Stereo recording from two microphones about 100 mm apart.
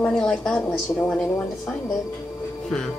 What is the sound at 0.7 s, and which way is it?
Speech, 15° left (ahead or behind).